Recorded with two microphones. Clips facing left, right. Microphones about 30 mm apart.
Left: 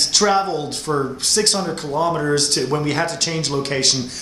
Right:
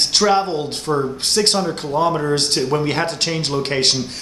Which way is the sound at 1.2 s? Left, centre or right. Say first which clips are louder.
Right 2 dB; right.